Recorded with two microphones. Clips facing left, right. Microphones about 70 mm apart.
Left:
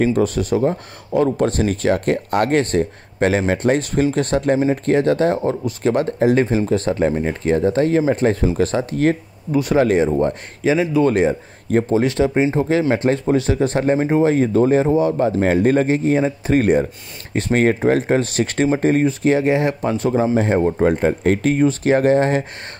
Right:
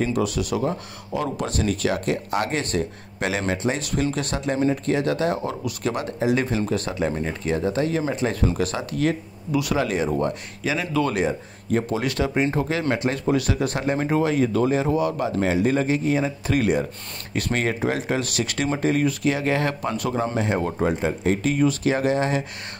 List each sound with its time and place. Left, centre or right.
0.0 s speech: left
10.0 s speech: left
13.9 s speech: centre
14.2 s speech: left
15.4 s speech: left
20.8 s speech: left